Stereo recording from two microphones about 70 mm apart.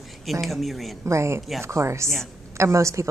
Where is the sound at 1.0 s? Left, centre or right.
Right.